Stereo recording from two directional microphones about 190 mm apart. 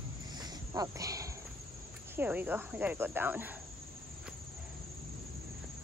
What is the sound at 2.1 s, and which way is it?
Speech, 10° right (ahead or behind).